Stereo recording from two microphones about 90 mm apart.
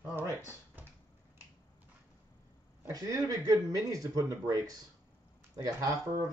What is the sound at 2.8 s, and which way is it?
Speech, 45° right (ahead or behind).